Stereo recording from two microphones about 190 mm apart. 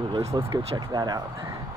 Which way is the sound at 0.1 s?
15° right (ahead or behind).